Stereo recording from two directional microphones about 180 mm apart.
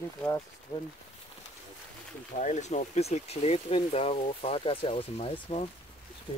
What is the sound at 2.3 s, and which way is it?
Speech, 40° left (ahead or behind).